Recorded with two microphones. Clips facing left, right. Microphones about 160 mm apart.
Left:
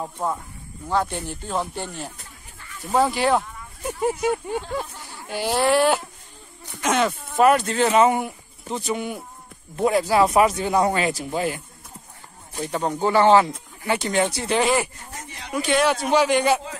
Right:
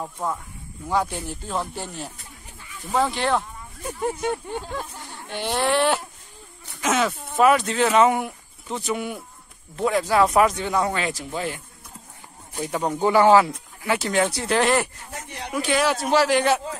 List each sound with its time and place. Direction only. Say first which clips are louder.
0.0 s speech: left 2 dB; 10° left (ahead or behind)
0.8 s speech: even; 10° right (ahead or behind); by 10.5 s 5° left (ahead or behind)
10.6 s speech: left 3 dB; 35° left (ahead or behind)
12.5 s speech: even; 5° right (ahead or behind)